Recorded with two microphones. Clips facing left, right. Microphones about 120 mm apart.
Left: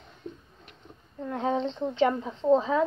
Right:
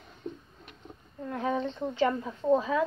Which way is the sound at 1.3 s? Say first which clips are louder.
Left 2 dB; 25° left (ahead or behind).